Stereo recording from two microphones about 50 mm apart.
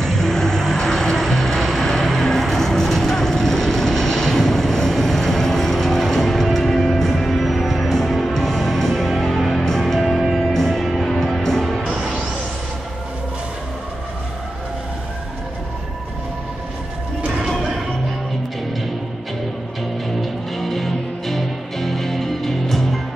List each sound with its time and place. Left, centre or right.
0.0 s music: centre
11.9 s music: right
20.2 s music: centre